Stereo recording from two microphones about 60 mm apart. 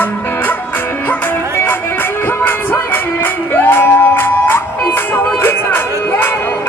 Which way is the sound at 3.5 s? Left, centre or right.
Left.